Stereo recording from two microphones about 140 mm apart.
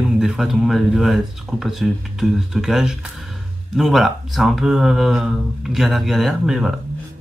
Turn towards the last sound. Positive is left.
turn(degrees=0)  # may be behind; listen again after turning